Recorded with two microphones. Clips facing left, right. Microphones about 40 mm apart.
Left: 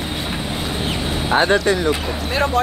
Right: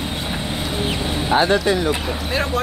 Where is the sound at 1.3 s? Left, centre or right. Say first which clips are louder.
Left 1 dB; left.